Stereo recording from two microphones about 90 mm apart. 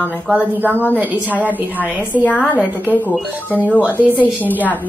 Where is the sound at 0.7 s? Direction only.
20° left (ahead or behind).